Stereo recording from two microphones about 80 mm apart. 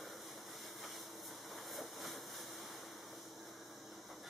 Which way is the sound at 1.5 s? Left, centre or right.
Centre.